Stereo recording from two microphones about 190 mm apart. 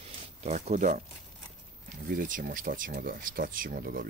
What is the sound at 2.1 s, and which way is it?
Speech, 45° right (ahead or behind).